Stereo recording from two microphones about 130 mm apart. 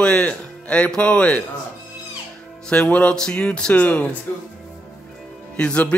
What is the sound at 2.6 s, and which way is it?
Speech, 5° left (ahead or behind).